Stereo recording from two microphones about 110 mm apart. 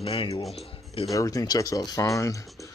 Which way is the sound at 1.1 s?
30° left (ahead or behind).